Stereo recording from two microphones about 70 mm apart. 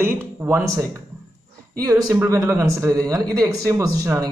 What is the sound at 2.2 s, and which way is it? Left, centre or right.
Speech, right.